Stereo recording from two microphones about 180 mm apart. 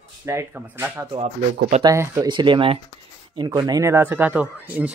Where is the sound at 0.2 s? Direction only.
15° right (ahead or behind).